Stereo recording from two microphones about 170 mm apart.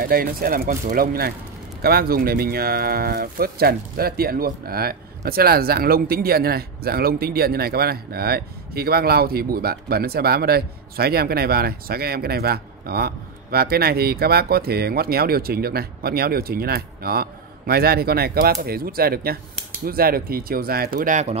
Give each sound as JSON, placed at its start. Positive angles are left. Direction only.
{"t": 0.0, "sound": "speech", "side_deg": -60}